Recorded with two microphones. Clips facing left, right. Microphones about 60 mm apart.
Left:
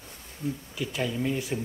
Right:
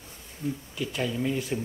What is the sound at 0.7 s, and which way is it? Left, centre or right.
Speech, centre.